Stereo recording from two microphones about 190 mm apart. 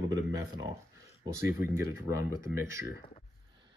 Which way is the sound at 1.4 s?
10° right (ahead or behind).